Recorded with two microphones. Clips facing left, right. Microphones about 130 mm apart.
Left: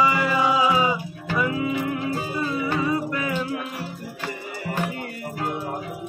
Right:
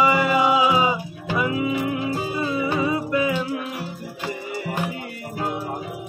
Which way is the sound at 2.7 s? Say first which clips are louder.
Right 2 dB; 15° right (ahead or behind).